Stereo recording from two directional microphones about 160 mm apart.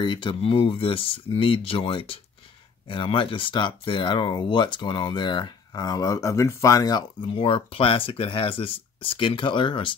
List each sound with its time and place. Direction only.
0.0 s speech: 30° left (ahead or behind)